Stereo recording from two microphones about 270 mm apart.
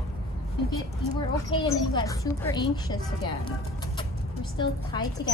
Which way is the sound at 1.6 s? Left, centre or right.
Centre.